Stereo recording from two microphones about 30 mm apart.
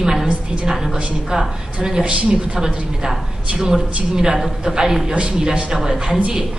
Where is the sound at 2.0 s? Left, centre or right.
Right.